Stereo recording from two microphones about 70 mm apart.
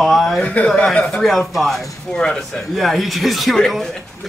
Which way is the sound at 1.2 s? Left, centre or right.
Centre.